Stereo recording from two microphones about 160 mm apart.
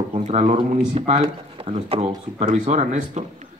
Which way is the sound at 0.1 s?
40° right (ahead or behind).